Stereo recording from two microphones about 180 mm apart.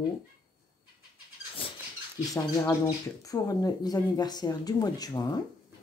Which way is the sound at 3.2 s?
20° left (ahead or behind).